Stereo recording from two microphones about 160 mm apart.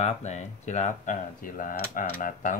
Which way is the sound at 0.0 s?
45° left (ahead or behind).